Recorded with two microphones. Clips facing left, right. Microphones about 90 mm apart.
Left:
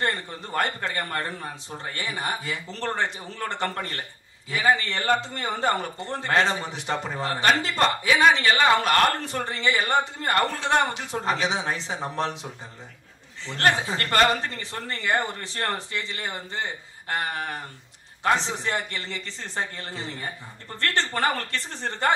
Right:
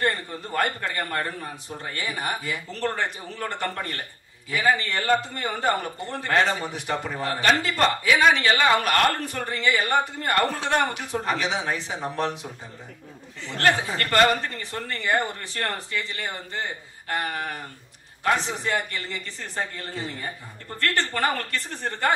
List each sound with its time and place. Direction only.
0.0 s a man's voice: 25° left (ahead or behind)
13.5 s a man's voice: 20° left (ahead or behind)